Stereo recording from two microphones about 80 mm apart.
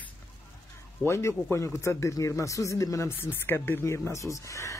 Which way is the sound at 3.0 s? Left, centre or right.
Left.